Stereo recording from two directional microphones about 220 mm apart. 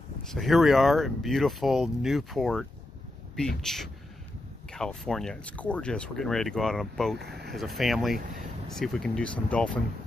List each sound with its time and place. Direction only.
0.2 s speech: centre (ahead or behind)
3.6 s speech: centre (ahead or behind)
7.2 s speech: 45° right (ahead or behind)
7.5 s speech: centre (ahead or behind)